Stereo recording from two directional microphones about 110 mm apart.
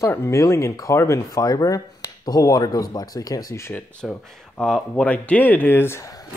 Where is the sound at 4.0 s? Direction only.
5° left (ahead or behind); by 6.1 s 25° left (ahead or behind).